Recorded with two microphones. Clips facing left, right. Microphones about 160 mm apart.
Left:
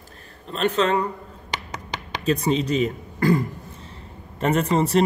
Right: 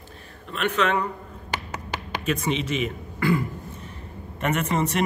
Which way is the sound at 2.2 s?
35° left (ahead or behind).